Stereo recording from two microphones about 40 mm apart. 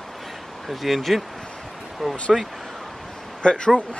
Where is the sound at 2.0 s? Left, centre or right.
Centre.